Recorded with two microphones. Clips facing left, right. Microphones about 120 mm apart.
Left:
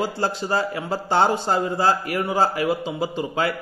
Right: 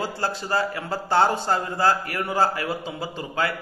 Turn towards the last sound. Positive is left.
turn(degrees=20)  # may be behind; listen again after turning